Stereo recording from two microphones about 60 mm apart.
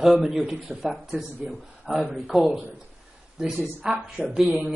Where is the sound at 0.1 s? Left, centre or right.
Centre.